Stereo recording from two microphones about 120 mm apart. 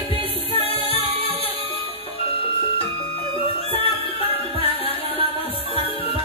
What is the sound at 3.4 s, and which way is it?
Music, 50° left (ahead or behind).